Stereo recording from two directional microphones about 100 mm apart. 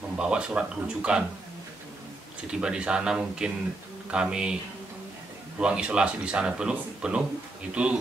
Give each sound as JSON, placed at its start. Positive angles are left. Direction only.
{"t": 0.2, "sound": "speech", "side_deg": -10}
{"t": 2.4, "sound": "speech", "side_deg": -10}
{"t": 5.6, "sound": "speech", "side_deg": -10}